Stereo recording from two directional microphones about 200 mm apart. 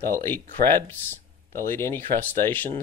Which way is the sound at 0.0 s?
10° left (ahead or behind).